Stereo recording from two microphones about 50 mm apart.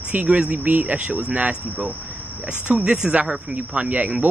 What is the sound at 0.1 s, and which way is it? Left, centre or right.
Speech, right.